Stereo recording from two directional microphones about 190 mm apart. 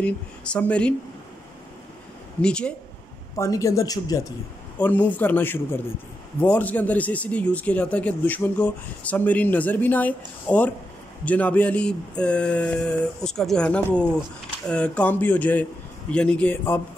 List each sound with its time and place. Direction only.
0.0 s a man's voice: 5° left (ahead or behind)
2.4 s speech: 5° left (ahead or behind)
3.3 s a man's voice: 15° left (ahead or behind)
4.7 s a man's voice: 10° left (ahead or behind)